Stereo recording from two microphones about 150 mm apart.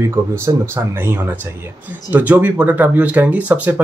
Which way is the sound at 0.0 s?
20° right (ahead or behind).